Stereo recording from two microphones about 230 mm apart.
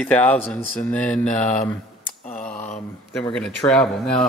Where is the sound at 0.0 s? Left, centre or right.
Centre.